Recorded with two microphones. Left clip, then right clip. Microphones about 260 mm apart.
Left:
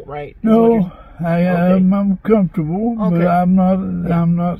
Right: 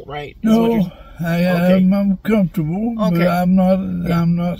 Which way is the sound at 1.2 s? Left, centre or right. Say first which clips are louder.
Left 1 dB; centre.